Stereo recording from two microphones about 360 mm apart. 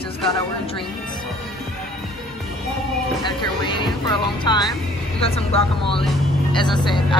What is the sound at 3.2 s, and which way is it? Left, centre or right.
Speech, centre.